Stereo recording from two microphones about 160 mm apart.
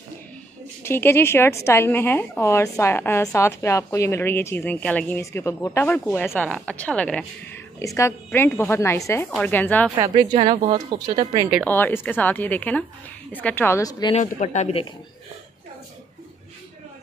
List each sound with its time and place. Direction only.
0.8 s a woman's voice: 15° left (ahead or behind)
7.8 s a woman's voice: 20° left (ahead or behind)
9.9 s speech: 20° right (ahead or behind)
10.3 s speech: 30° right (ahead or behind)
11.6 s a woman's voice: 10° left (ahead or behind)
14.1 s speech: 45° left (ahead or behind)